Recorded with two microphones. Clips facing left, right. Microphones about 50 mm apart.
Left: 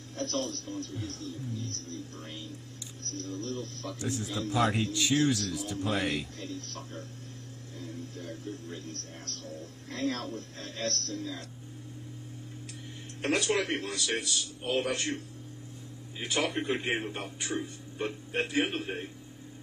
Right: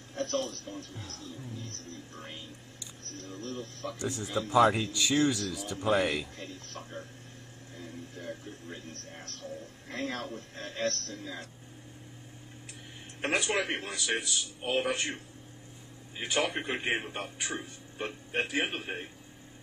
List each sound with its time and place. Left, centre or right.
0.1 s television: right
0.4 s a man's voice: right
0.9 s a man's voice: centre
1.6 s a man's voice: right
4.0 s a man's voice: centre
4.5 s a man's voice: centre
5.5 s a man's voice: centre
5.8 s a man's voice: centre
13.2 s a man's voice: right